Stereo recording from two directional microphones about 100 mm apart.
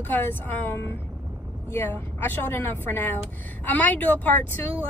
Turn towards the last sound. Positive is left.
turn(degrees=20)  # may be behind; listen again after turning